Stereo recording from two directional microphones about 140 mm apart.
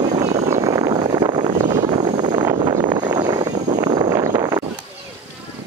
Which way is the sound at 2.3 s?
35° right (ahead or behind).